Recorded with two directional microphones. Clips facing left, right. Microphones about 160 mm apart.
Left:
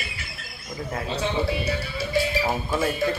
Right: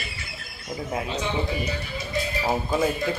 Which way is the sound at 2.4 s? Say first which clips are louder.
Right 1 dB; 25° right (ahead or behind).